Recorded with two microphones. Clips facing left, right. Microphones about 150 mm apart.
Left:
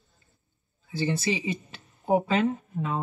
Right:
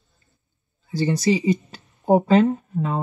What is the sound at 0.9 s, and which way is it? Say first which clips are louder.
Speech: right 7 dB; 40° right (ahead or behind).